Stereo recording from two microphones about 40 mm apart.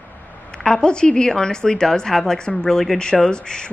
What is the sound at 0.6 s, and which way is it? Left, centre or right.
A woman's voice, left.